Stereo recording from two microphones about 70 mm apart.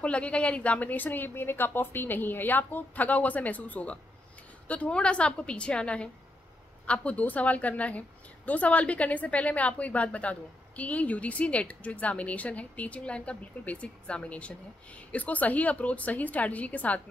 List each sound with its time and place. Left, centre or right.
0.0 s a woman's voice: centre